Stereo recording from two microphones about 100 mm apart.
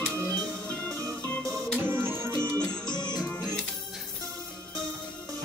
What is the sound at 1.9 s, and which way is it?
Music, 20° right (ahead or behind).